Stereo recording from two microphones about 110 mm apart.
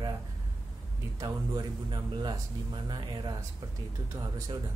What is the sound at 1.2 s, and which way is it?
Speech, 40° right (ahead or behind).